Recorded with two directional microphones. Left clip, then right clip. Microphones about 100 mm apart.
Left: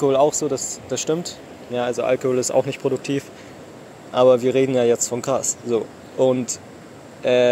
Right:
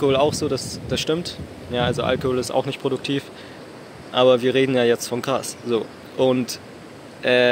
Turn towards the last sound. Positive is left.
turn(degrees=-20)  # may be behind; listen again after turning